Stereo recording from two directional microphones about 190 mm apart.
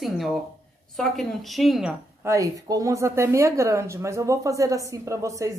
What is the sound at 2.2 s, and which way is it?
Speech, 15° right (ahead or behind).